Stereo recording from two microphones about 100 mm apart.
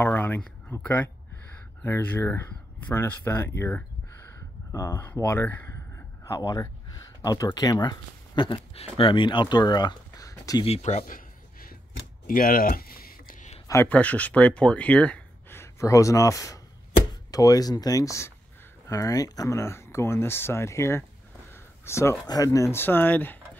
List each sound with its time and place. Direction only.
0.0 s a sound: 20° left (ahead or behind)
0.7 s speech: 20° left (ahead or behind); by 10.2 s 45° left (ahead or behind)
10.2 s speech: 35° left (ahead or behind)
10.6 s speech: 90° left
13.8 s speech: 15° left (ahead or behind)
15.6 s speech: 30° left (ahead or behind)
21.5 s a sound: 25° left (ahead or behind)
22.2 s speech: 35° left (ahead or behind); by 23.3 s 20° left (ahead or behind)